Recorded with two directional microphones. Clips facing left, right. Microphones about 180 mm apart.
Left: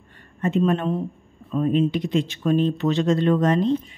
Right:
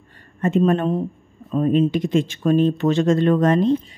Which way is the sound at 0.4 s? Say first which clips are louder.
Right 3 dB; 45° right (ahead or behind).